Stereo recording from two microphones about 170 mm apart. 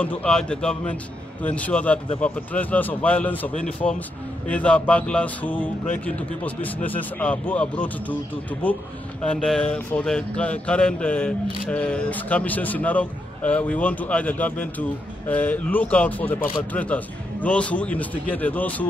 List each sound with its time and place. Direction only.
0.0 s a man's voice: 5° left (ahead or behind)
9.2 s a man's voice: 5° left (ahead or behind)